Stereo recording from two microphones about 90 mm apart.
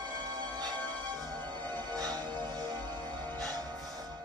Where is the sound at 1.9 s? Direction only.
45° right (ahead or behind).